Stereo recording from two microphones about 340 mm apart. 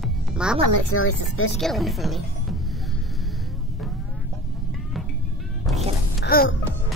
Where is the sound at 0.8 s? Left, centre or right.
Left.